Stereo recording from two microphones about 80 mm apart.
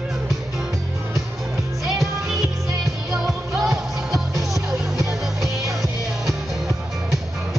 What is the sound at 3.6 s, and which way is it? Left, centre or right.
Music, centre.